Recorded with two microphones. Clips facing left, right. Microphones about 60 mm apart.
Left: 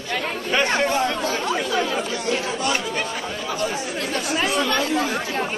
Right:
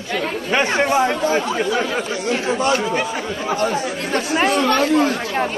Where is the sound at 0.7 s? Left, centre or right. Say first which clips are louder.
Right 4 dB; centre.